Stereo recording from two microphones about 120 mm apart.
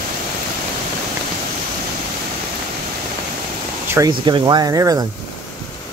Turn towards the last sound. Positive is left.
turn(degrees=-30)  # may be behind; listen again after turning